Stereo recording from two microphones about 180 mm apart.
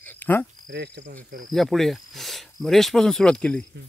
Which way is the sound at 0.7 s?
65° right (ahead or behind).